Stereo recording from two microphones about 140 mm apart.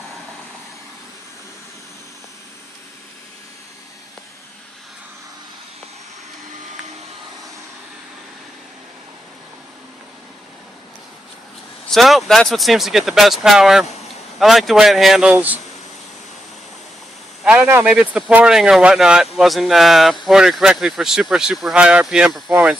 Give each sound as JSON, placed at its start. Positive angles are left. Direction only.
{"t": 11.9, "sound": "speech", "side_deg": 0}
{"t": 15.3, "sound": "speech", "side_deg": -10}
{"t": 17.4, "sound": "a man's voice", "side_deg": -10}